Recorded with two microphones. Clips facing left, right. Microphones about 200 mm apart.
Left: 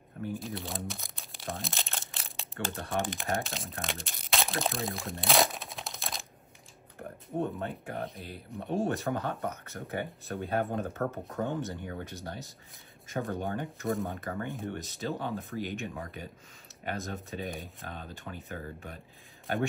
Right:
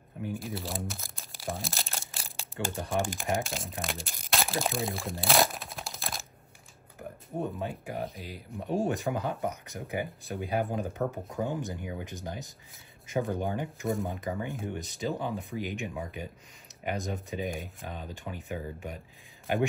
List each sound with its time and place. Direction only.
0.3 s speech: centre (ahead or behind)
9.5 s speech: 15° right (ahead or behind)
10.9 s speech: 15° right (ahead or behind)
13.1 s speech: centre (ahead or behind)
14.7 s speech: 10° right (ahead or behind)
18.1 s speech: 15° right (ahead or behind)